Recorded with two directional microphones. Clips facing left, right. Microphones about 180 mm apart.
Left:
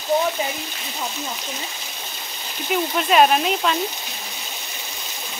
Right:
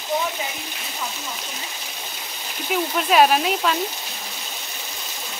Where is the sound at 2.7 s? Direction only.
Centre (ahead or behind).